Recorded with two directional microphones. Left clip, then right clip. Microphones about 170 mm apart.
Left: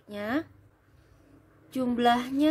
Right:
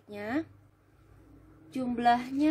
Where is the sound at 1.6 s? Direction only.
30° left (ahead or behind).